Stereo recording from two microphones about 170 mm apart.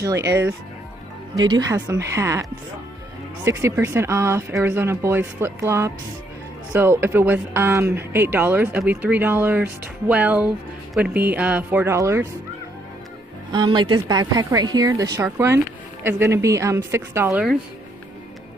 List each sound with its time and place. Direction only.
0.0 s a woman's voice: 15° right (ahead or behind)
3.4 s a woman's voice: 15° right (ahead or behind)
13.5 s a woman's voice: 25° right (ahead or behind)